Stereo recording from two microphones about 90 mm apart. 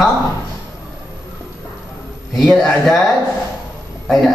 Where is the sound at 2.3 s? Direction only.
Centre (ahead or behind).